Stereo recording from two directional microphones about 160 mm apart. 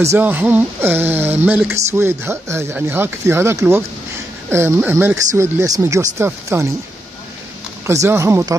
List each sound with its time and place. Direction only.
0.0 s speech: 15° right (ahead or behind)
7.8 s speech: 20° right (ahead or behind)